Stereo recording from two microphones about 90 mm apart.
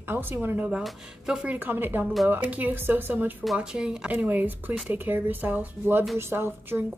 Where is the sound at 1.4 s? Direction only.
20° right (ahead or behind).